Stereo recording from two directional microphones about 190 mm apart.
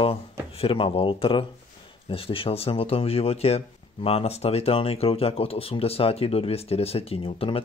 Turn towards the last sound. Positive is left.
turn(degrees=30)  # may be behind; listen again after turning